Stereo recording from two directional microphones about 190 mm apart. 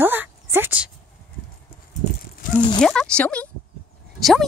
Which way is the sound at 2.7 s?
5° left (ahead or behind).